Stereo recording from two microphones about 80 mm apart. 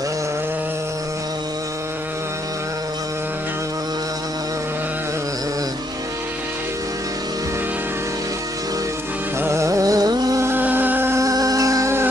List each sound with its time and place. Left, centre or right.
9.4 s music: right
10.4 s music: right
11.1 s music: right